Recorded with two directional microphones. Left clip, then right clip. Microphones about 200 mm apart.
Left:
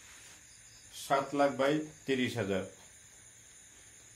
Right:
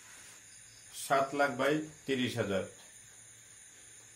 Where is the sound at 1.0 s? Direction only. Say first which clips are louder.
Even; 30° left (ahead or behind).